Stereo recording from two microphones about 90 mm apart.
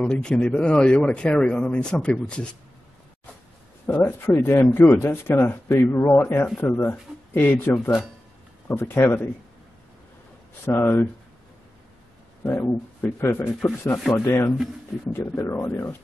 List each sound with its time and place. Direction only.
0.0 s speech: 10° left (ahead or behind)
3.8 s speech: 25° left (ahead or behind)
10.6 s speech: 25° left (ahead or behind)
12.4 s speech: 20° left (ahead or behind)